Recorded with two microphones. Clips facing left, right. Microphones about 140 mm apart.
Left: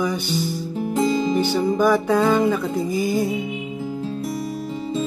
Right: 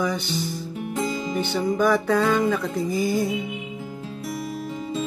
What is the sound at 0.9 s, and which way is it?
Music, 30° left (ahead or behind).